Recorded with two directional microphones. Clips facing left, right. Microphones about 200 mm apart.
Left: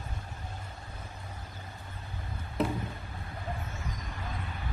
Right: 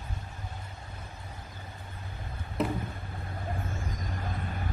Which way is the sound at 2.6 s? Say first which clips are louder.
Even; centre (ahead or behind).